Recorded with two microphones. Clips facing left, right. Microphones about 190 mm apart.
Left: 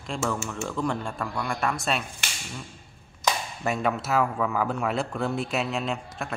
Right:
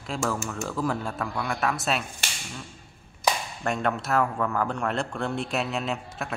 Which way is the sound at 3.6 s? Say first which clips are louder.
Left 2 dB; 5° left (ahead or behind).